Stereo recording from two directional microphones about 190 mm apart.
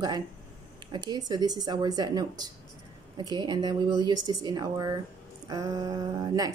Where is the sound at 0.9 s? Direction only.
20° right (ahead or behind).